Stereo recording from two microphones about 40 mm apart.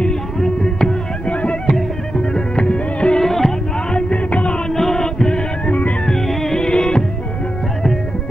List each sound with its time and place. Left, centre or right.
0.4 s music: centre
1.2 s music: left
1.7 s music: centre
3.2 s music: centre
3.9 s music: left
4.6 s music: centre
5.7 s music: left
6.0 s music: centre
6.6 s music: left